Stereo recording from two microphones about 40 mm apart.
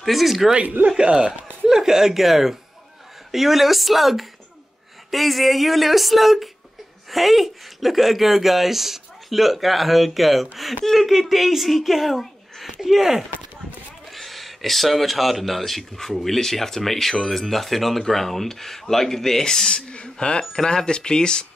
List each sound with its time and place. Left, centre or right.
0.0 s speech: centre
0.8 s speech: right
1.7 s speech: centre; by 21.5 s left